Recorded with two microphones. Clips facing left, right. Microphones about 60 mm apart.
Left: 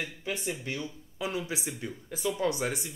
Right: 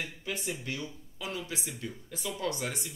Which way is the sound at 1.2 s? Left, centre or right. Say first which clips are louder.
Left 4 dB; centre.